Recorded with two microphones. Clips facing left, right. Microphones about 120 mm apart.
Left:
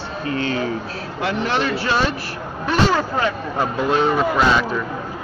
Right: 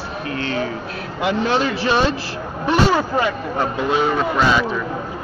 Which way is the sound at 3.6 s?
Centre (ahead or behind).